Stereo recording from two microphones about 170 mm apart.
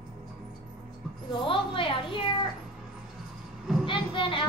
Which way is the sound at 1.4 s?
30° left (ahead or behind).